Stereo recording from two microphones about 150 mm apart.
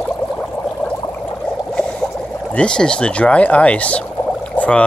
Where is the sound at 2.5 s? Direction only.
5° left (ahead or behind).